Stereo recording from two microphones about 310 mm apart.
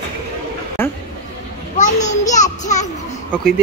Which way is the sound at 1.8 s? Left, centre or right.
Left.